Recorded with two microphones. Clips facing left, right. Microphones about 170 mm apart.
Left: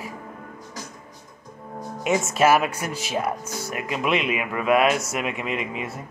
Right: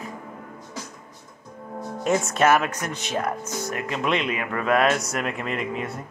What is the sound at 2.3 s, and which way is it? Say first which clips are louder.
Speech: left 3 dB; 10° left (ahead or behind).